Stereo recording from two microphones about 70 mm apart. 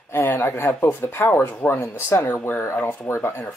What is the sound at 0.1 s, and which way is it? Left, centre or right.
Speech, left.